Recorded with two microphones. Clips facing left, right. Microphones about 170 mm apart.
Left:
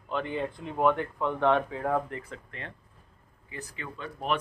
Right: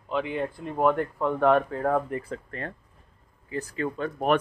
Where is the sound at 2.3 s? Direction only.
40° right (ahead or behind).